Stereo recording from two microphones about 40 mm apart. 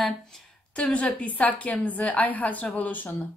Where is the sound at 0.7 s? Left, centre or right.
Left.